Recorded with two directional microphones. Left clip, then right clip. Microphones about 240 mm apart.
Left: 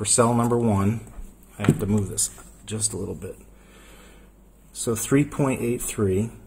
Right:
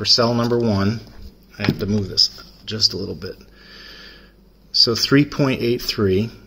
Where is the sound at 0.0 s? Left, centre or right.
Centre.